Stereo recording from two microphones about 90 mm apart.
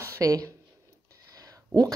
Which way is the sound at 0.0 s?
35° right (ahead or behind).